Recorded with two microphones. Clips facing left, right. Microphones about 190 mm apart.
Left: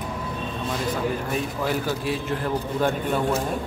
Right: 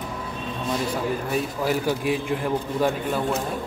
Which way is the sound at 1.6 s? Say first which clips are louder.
Right 3 dB; 10° right (ahead or behind).